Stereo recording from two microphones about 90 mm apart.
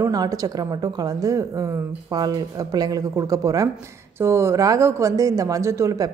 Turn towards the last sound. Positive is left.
turn(degrees=-35)  # may be behind; listen again after turning